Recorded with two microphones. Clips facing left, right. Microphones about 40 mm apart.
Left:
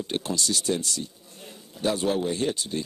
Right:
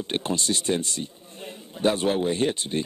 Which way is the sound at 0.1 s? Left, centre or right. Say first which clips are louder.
Right 3 dB; right.